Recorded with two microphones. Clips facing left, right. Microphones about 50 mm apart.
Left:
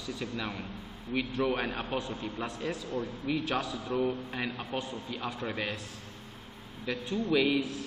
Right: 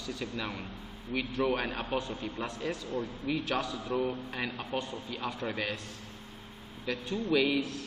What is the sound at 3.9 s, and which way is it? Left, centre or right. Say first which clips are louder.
A man's voice: left 2 dB; centre.